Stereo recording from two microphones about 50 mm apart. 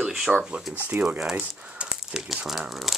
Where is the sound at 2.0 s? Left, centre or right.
Centre.